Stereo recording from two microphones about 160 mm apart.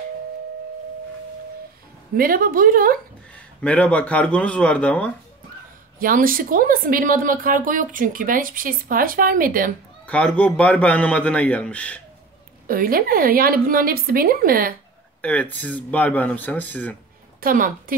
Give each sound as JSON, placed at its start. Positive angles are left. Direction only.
{"t": 2.1, "sound": "a woman's voice", "side_deg": -65}
{"t": 3.3, "sound": "a man's voice", "side_deg": 10}
{"t": 5.9, "sound": "a woman's voice", "side_deg": -60}
{"t": 10.0, "sound": "a man's voice", "side_deg": 10}
{"t": 12.6, "sound": "a woman's voice", "side_deg": -65}
{"t": 15.2, "sound": "a man's voice", "side_deg": 10}
{"t": 17.4, "sound": "a woman's voice", "side_deg": -60}